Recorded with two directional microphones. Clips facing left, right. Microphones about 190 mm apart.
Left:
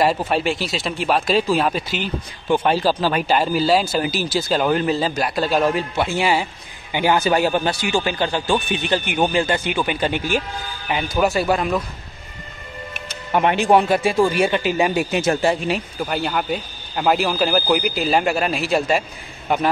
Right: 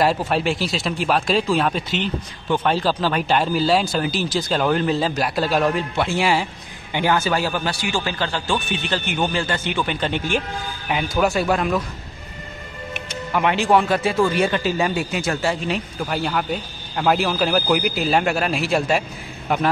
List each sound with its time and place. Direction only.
0.0 s speech: centre (ahead or behind)
6.9 s speech: 10° left (ahead or behind)
13.3 s speech: 20° left (ahead or behind)
15.7 s speech: 5° left (ahead or behind)